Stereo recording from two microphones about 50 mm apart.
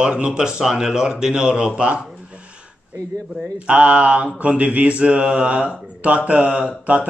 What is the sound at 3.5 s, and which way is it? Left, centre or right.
Mantra, right.